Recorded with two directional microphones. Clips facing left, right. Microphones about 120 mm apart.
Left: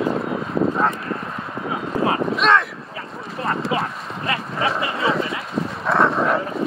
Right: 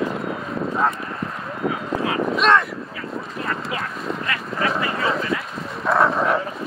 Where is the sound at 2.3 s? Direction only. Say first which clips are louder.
Right 3 dB; centre (ahead or behind).